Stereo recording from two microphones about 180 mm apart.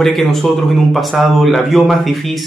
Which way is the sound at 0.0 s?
Centre (ahead or behind).